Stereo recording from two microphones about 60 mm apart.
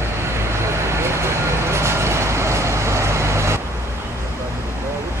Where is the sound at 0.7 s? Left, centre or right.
Right.